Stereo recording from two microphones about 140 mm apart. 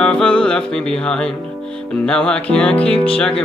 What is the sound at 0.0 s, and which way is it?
Music, 5° left (ahead or behind).